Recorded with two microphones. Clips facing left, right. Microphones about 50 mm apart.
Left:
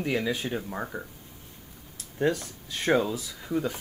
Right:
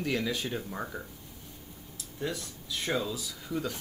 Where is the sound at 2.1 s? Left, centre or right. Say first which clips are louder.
Left 9 dB; left.